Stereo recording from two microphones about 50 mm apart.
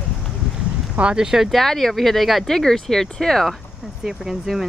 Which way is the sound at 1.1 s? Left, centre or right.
Centre.